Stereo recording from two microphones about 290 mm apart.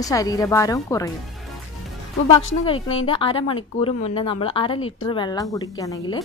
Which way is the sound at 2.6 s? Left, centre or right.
Centre.